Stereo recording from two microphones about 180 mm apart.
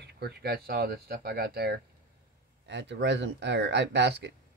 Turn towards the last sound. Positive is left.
turn(degrees=-70)  # may be behind; listen again after turning